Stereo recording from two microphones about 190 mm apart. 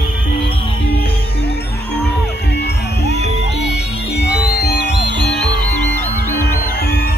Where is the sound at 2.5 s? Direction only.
60° left (ahead or behind).